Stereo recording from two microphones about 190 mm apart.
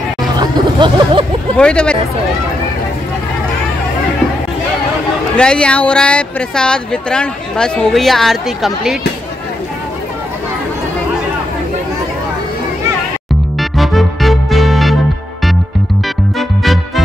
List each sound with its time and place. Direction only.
0.4 s a sound: 25° right (ahead or behind)
1.6 s speech: 5° left (ahead or behind)
5.3 s speech: 5° left (ahead or behind)
13.6 s music: centre (ahead or behind)
16.3 s music: centre (ahead or behind)